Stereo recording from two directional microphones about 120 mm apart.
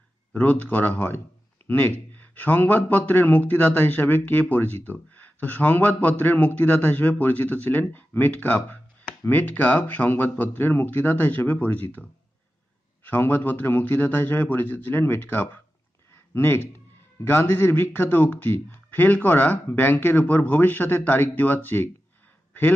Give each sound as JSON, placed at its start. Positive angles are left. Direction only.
{"t": 0.3, "sound": "a man's voice", "side_deg": 10}